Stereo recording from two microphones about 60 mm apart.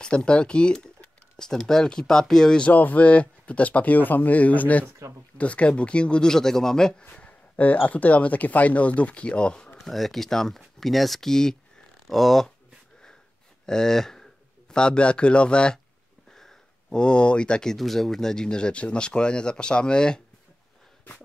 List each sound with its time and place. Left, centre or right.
0.0 s speech: centre
2.7 s speech: left; by 7.1 s centre
7.1 s speech: left
9.8 s speech: centre
13.7 s speech: centre